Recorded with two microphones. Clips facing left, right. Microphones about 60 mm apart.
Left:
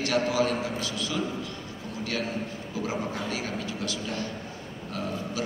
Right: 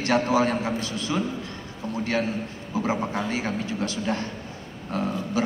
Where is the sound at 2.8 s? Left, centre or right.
Right.